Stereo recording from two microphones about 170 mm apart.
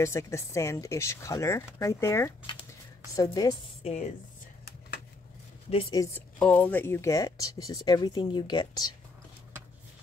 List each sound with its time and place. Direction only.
0.0 s speech: 15° left (ahead or behind)
3.8 s speech: 40° left (ahead or behind)
5.7 s speech: 30° left (ahead or behind)
6.4 s speech: 10° left (ahead or behind); by 8.9 s 25° left (ahead or behind)